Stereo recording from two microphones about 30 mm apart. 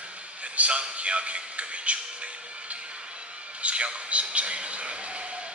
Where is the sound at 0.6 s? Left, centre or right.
Right.